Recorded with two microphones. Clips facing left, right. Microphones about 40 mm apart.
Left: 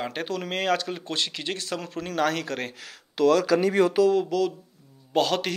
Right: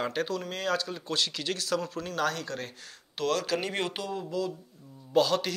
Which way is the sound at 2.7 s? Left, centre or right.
Left.